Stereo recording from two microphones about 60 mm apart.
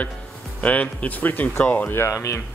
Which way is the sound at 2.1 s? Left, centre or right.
Left.